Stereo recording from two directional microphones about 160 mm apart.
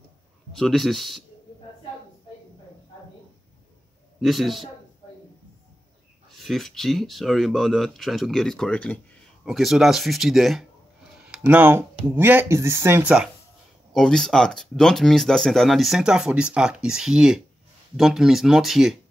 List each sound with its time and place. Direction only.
0.5 s speech: centre (ahead or behind)
4.2 s speech: centre (ahead or behind)
6.3 s speech: centre (ahead or behind)
13.9 s speech: centre (ahead or behind)